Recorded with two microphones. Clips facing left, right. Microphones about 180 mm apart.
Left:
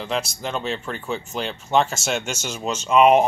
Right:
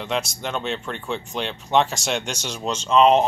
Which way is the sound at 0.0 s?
Centre (ahead or behind).